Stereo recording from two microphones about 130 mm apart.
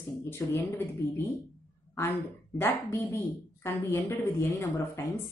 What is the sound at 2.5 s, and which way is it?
A woman's voice, 15° left (ahead or behind).